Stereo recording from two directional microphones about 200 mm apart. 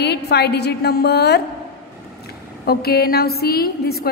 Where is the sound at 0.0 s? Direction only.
55° left (ahead or behind).